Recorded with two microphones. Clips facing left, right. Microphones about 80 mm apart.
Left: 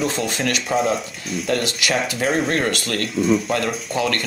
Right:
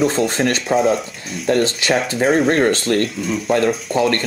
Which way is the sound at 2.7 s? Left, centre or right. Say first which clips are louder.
Right 7 dB; right.